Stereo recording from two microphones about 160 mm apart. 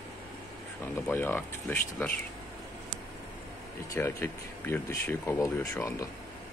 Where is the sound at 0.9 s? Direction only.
15° left (ahead or behind).